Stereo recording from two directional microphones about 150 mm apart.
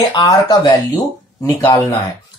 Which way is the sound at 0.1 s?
30° left (ahead or behind).